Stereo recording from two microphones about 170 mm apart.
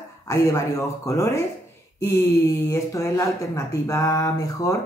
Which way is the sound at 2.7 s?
15° left (ahead or behind).